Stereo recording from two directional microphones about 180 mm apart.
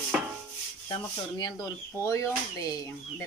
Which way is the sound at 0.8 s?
20° left (ahead or behind).